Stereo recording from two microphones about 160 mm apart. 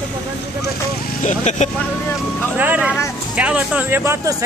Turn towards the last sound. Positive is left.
turn(degrees=-20)  # may be behind; listen again after turning